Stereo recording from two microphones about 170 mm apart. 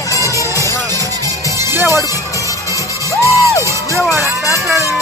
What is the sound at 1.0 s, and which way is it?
Music, 20° right (ahead or behind).